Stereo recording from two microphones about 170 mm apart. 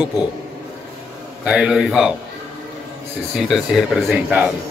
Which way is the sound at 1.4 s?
5° right (ahead or behind).